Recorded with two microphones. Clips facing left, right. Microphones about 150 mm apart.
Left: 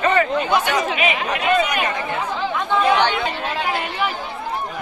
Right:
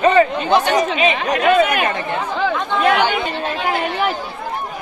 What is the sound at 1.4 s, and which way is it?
Speech, 60° right (ahead or behind).